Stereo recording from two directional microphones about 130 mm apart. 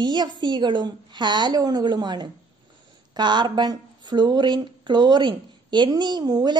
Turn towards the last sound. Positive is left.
turn(degrees=-30)  # may be behind; listen again after turning